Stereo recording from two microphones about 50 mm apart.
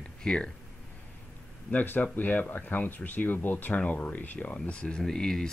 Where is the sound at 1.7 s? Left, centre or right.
Left.